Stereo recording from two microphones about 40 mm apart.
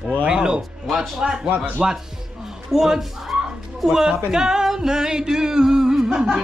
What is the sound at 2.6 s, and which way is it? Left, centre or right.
Music, centre.